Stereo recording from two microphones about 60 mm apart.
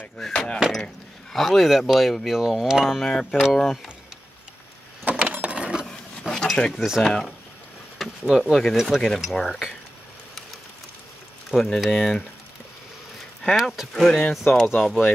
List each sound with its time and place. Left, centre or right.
0.3 s speech: centre
5.0 s a sound: right
6.3 s a sound: centre
7.0 s speech: centre
11.5 s speech: centre
13.6 s speech: centre